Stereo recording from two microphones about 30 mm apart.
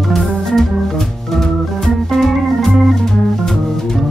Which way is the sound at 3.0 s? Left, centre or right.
Centre.